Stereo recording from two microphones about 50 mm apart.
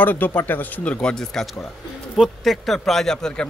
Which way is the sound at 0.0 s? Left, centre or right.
Left.